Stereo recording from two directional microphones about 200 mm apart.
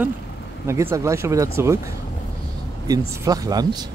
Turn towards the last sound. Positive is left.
turn(degrees=-20)  # may be behind; listen again after turning